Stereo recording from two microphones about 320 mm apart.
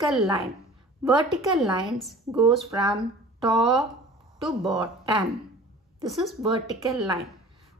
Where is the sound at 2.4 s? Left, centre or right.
Centre.